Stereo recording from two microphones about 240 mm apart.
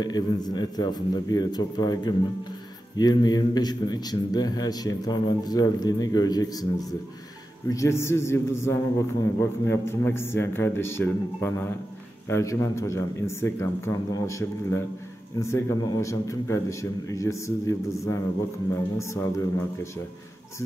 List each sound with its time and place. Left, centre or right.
0.0 s a man's voice: centre